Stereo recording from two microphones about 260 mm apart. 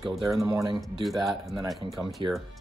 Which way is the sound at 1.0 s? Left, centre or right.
Centre.